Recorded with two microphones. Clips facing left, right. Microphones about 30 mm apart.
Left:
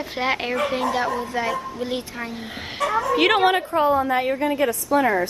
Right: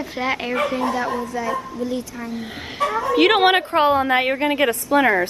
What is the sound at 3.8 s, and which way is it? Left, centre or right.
Speech, right.